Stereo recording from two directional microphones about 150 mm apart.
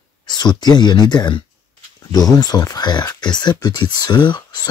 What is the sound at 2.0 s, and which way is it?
Speech, 25° left (ahead or behind).